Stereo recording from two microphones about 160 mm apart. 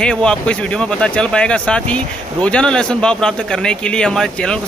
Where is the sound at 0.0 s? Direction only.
5° left (ahead or behind).